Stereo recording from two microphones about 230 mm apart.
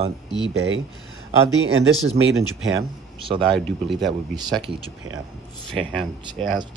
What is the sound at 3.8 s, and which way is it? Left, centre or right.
Speech, centre.